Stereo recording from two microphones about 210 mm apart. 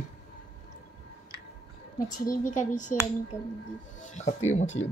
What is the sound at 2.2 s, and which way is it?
Speech, 40° left (ahead or behind).